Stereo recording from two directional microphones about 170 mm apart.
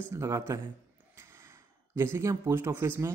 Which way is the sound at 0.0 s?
15° right (ahead or behind).